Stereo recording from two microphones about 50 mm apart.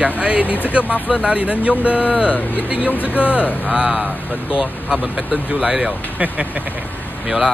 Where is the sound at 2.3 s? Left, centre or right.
Left.